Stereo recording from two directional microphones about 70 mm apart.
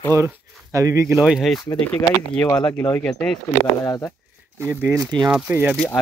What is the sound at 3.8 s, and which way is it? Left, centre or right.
Speech, left.